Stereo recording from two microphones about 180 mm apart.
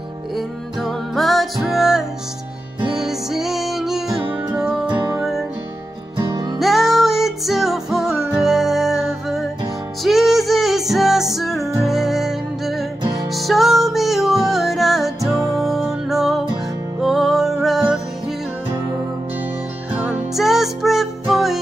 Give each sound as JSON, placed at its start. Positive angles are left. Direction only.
{"t": 0.4, "sound": "music", "side_deg": 0}
{"t": 4.8, "sound": "music", "side_deg": -25}
{"t": 5.1, "sound": "music", "side_deg": 0}
{"t": 6.1, "sound": "music", "side_deg": -20}
{"t": 6.6, "sound": "music", "side_deg": 0}
{"t": 19.9, "sound": "music", "side_deg": -5}